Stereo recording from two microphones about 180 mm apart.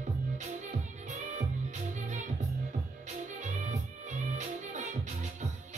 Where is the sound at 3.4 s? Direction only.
40° right (ahead or behind).